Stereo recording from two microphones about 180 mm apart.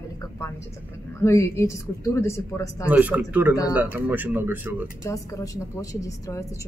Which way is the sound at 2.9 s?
10° right (ahead or behind).